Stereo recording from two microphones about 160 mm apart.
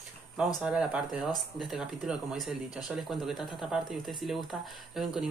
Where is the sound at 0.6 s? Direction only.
5° right (ahead or behind).